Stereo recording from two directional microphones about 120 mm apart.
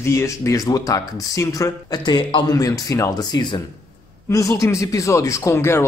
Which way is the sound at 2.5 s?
30° left (ahead or behind).